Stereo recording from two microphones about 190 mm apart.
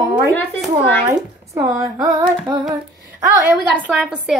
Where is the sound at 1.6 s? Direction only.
5° right (ahead or behind).